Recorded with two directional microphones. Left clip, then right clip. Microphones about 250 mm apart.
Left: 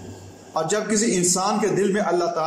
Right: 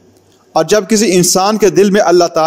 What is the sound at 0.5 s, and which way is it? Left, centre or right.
A man's voice, right.